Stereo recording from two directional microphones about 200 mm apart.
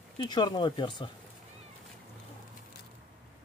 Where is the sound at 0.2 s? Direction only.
20° left (ahead or behind).